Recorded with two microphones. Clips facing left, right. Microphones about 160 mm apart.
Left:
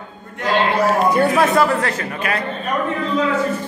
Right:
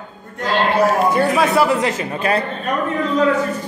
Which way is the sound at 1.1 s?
Centre (ahead or behind).